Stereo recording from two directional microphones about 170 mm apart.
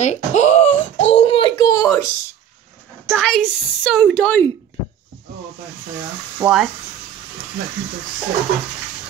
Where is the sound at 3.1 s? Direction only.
5° left (ahead or behind).